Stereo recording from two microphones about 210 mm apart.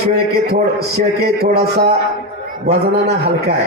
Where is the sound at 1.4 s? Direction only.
50° right (ahead or behind).